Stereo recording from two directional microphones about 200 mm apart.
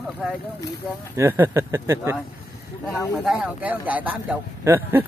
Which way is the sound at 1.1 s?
10° right (ahead or behind).